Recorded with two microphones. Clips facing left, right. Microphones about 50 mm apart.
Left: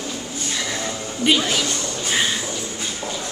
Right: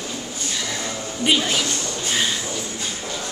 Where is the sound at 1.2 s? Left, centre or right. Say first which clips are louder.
Left 1 dB; centre.